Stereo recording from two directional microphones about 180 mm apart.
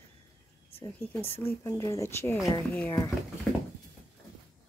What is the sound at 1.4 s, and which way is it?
Speech, 20° left (ahead or behind).